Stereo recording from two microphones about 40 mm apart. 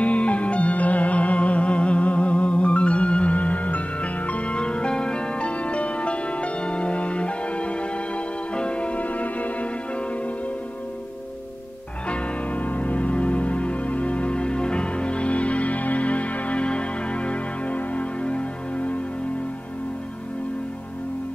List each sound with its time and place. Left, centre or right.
0.0 s music: left
12.1 s music: left